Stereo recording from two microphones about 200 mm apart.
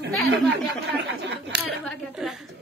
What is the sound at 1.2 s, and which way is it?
Speech, 60° right (ahead or behind).